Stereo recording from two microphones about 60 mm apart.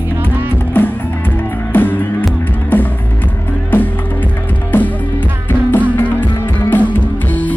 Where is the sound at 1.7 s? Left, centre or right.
Left.